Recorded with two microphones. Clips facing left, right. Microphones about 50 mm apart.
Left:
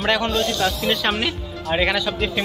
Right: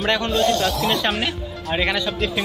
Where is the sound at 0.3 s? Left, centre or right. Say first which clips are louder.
Right 3 dB; right.